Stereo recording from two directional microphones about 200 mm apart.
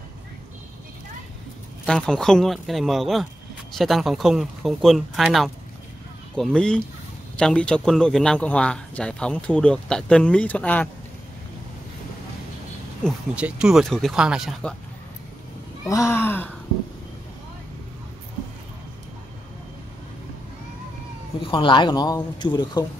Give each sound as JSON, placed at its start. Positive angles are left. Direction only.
{"t": 1.9, "sound": "a man's voice", "side_deg": 5}
{"t": 13.0, "sound": "a man's voice", "side_deg": -5}
{"t": 15.9, "sound": "speech", "side_deg": 15}
{"t": 21.5, "sound": "speech", "side_deg": 25}